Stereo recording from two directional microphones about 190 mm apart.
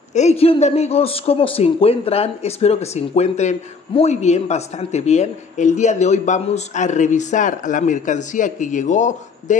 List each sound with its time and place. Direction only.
0.1 s speech: 35° left (ahead or behind)